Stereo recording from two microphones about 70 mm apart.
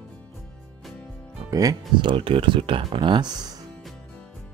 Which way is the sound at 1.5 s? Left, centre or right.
Right.